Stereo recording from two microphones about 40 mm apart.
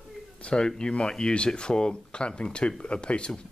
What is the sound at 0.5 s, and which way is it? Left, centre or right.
Speech, centre.